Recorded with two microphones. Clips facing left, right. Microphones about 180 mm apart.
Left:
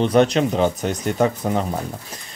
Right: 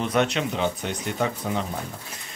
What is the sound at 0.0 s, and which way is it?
Speech, 35° left (ahead or behind).